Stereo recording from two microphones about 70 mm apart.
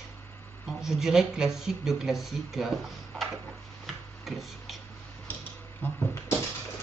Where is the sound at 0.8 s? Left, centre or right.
Centre.